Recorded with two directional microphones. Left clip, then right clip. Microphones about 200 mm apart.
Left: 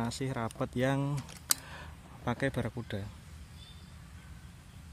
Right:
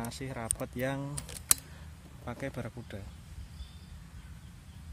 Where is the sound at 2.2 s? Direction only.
40° left (ahead or behind).